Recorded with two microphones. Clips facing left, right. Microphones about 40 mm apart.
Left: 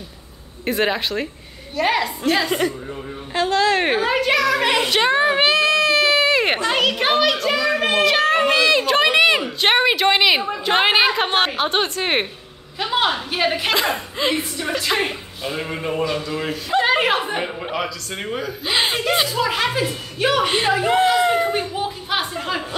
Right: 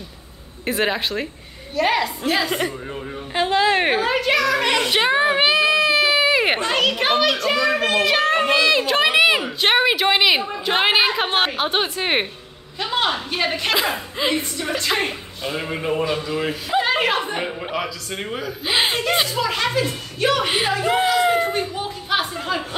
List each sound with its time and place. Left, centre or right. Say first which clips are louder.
0.7 s a woman's voice: left 1 dB; centre
3.3 s a woman's voice: even; centre
3.8 s a woman's voice: left 1 dB; centre
4.9 s baby cry: even; centre
6.7 s a woman's voice: left 1 dB; centre
16.8 s a woman's voice: left 4 dB; centre